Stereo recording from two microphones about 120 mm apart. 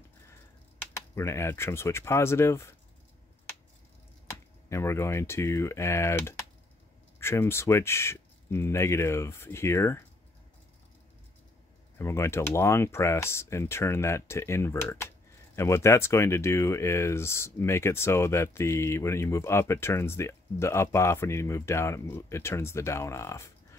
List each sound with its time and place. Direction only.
0.9 s speech: 25° left (ahead or behind)
4.6 s speech: 20° left (ahead or behind)
12.0 s speech: 20° left (ahead or behind)